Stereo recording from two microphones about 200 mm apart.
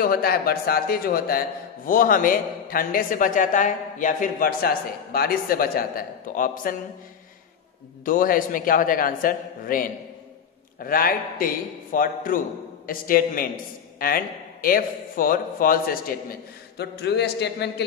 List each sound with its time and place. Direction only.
0.0 s a man's voice: 50° left (ahead or behind)
8.0 s a man's voice: 45° left (ahead or behind)